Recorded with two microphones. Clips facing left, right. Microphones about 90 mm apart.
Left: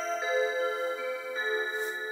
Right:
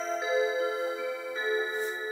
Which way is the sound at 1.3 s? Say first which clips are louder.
Right 3 dB; 30° left (ahead or behind).